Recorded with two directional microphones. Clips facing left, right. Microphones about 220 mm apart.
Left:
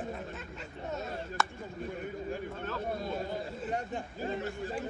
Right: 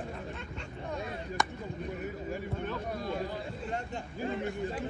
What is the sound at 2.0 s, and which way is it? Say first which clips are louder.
Speech: even; 5° right (ahead or behind).